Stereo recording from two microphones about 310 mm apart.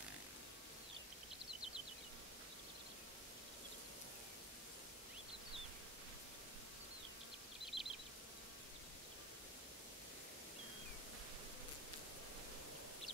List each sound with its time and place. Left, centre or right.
7.7 s bee: centre